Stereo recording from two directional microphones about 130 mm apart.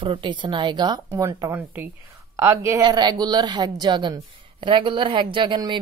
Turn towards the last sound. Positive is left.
turn(degrees=-35)  # may be behind; listen again after turning